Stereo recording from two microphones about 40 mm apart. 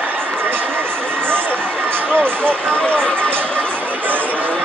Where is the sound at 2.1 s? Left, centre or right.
Right.